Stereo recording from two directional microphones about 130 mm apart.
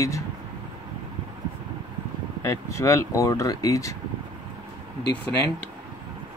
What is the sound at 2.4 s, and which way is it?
Speech, 25° left (ahead or behind).